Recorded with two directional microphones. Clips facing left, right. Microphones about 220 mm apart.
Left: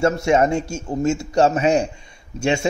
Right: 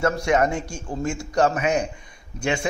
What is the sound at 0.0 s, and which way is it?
A man's voice, 25° left (ahead or behind).